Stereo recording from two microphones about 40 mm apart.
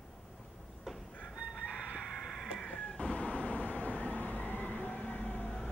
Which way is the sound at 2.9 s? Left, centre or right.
Left.